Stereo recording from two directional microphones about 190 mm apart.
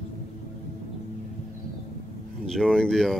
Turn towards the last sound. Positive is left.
turn(degrees=0)  # may be behind; listen again after turning